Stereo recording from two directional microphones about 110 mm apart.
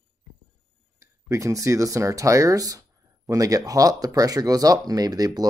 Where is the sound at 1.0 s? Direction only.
25° right (ahead or behind).